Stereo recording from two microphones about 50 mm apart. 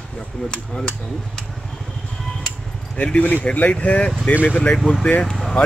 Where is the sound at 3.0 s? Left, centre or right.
Left.